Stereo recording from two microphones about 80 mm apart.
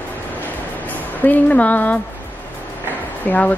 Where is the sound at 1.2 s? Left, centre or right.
Centre.